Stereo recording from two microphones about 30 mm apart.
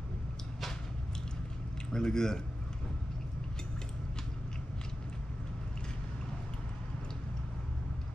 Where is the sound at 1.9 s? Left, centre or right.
Left.